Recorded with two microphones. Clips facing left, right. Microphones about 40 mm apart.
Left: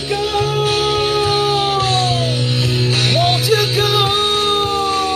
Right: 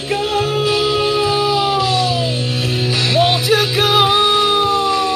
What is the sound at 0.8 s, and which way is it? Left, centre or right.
Music, left.